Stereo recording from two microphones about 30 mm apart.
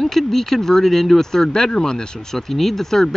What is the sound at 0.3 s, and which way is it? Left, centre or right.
Speech, centre.